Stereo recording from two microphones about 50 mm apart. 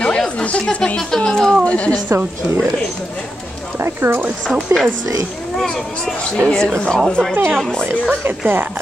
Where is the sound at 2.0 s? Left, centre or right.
Right.